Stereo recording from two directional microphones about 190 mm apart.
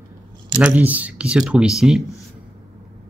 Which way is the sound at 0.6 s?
10° right (ahead or behind).